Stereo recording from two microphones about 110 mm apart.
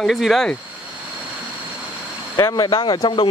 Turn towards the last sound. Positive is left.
turn(degrees=45)  # may be behind; listen again after turning